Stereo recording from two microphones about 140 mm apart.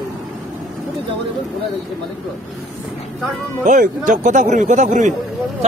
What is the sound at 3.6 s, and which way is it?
Speech, 65° right (ahead or behind).